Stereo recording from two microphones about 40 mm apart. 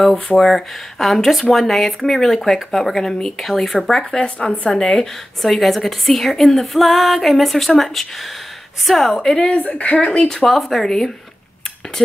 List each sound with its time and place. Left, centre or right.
0.4 s a woman's voice: centre
5.4 s speech: centre
9.5 s speech: left
10.2 s speech: centre